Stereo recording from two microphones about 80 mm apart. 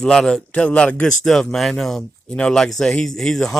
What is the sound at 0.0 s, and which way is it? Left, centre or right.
Speech, centre.